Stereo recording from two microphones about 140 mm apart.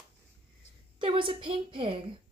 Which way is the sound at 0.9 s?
35° right (ahead or behind).